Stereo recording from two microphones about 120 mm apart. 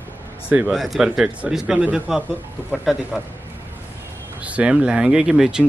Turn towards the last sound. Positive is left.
turn(degrees=-5)  # may be behind; listen again after turning